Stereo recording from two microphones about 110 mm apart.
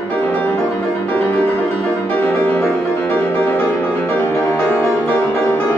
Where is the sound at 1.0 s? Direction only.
20° left (ahead or behind).